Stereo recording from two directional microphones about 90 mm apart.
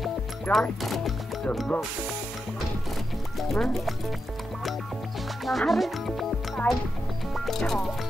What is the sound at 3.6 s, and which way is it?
Speech, 5° left (ahead or behind).